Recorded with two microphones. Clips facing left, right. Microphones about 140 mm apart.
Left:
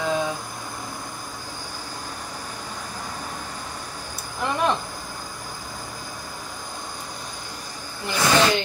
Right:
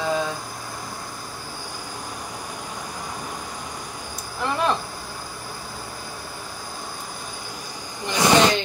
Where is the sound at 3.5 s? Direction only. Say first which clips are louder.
Right 1 dB; 10° right (ahead or behind).